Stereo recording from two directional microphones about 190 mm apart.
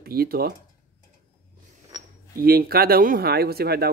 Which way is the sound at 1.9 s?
20° right (ahead or behind).